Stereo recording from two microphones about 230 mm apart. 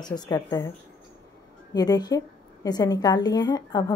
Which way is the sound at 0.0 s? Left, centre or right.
Centre.